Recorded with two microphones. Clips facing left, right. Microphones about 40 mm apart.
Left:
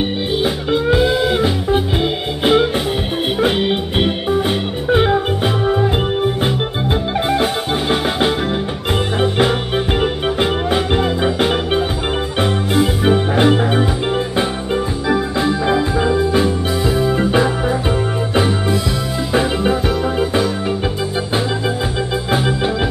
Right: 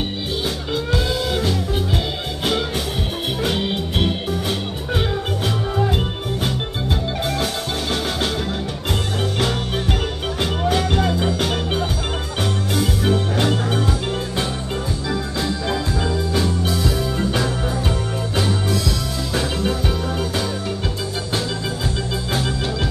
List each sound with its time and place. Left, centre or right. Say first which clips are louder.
0.4 s music: left 7 dB; left
15.0 s music: left 8 dB; left